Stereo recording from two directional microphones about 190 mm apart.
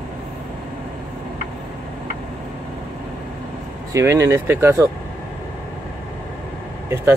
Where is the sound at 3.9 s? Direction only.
15° right (ahead or behind).